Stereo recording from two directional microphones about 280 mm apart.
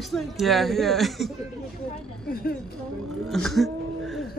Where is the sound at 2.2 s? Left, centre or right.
Left.